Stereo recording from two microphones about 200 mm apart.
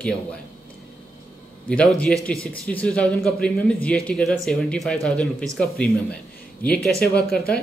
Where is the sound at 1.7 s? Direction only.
5° left (ahead or behind).